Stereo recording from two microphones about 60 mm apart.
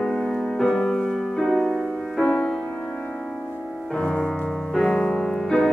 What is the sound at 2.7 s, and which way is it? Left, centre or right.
Music, left.